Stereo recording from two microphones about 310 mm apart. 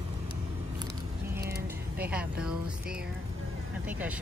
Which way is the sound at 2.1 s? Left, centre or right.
Centre.